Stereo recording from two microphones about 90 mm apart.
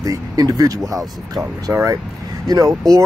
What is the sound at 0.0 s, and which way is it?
Speech, 40° right (ahead or behind).